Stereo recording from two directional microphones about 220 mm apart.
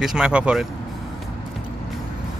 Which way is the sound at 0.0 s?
5° right (ahead or behind).